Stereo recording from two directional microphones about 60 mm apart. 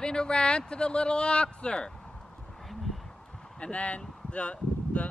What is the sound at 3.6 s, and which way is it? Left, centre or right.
Speech, left.